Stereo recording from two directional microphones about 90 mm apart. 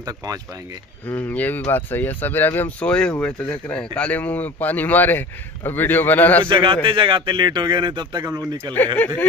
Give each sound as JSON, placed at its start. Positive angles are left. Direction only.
{"t": 1.1, "sound": "speech", "side_deg": 20}
{"t": 2.9, "sound": "speech", "side_deg": 10}
{"t": 6.4, "sound": "a man's voice", "side_deg": -70}
{"t": 8.7, "sound": "speech", "side_deg": 20}